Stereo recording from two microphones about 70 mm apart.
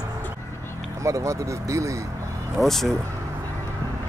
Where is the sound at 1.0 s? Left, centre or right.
Right.